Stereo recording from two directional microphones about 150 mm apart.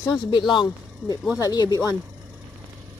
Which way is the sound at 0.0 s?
25° left (ahead or behind).